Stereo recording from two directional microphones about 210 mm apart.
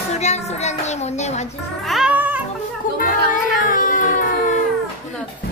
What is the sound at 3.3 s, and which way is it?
Music, 40° left (ahead or behind).